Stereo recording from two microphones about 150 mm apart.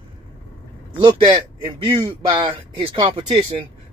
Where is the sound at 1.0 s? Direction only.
35° right (ahead or behind).